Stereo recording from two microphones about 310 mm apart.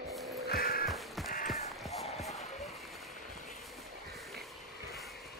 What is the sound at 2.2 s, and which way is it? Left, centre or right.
Basketball bounce, centre.